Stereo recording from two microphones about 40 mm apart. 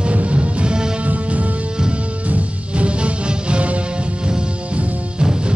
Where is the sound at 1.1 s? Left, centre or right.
Right.